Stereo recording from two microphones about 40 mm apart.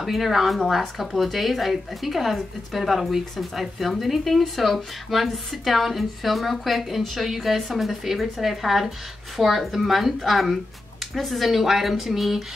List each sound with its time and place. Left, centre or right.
0.0 s speech: centre